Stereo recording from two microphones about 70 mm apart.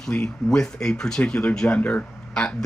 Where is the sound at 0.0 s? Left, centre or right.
Centre.